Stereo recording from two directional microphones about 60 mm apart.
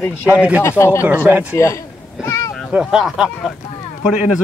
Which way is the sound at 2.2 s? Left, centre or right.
Left.